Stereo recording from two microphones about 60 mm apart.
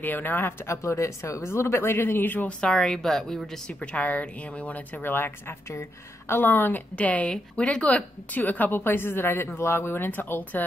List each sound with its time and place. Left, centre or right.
0.0 s a woman's voice: left
2.6 s a woman's voice: centre
3.8 s speech: left
5.7 s a woman's voice: left